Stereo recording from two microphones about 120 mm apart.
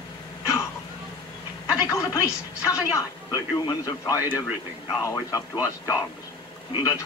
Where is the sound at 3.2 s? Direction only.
35° left (ahead or behind).